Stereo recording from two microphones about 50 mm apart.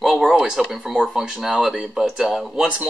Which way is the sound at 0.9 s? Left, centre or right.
Centre.